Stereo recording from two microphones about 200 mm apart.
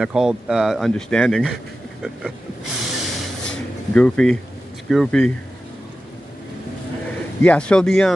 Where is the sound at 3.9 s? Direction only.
5° left (ahead or behind).